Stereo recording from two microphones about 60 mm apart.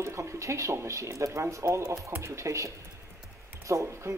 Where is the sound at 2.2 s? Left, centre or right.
Right.